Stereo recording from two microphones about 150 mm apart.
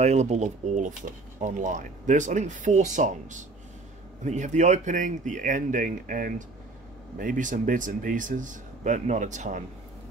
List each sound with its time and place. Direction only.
0.0 s speech: 50° right (ahead or behind)